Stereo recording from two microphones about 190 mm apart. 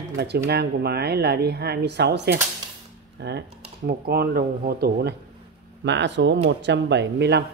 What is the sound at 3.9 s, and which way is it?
Speech, 55° right (ahead or behind).